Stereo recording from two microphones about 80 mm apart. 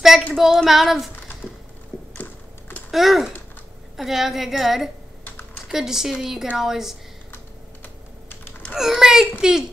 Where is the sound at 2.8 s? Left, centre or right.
Centre.